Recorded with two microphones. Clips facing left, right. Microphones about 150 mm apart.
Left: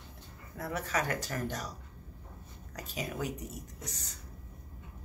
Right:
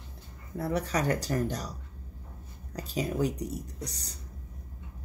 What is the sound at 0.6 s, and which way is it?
Speech, 35° right (ahead or behind).